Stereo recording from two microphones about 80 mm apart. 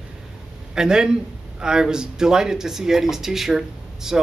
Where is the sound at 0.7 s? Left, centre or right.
Centre.